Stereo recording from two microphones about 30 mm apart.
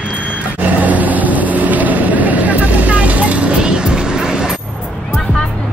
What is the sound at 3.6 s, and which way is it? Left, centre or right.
Music, right.